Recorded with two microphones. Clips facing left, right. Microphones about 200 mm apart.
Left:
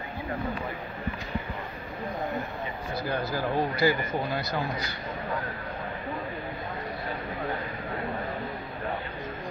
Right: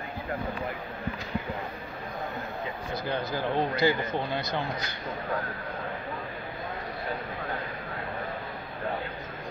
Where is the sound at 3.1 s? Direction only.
20° right (ahead or behind).